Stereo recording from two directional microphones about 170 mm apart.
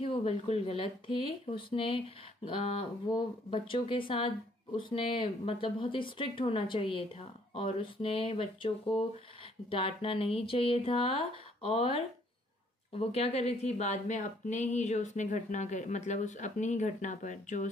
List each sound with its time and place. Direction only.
0.0 s a woman's voice: 35° left (ahead or behind)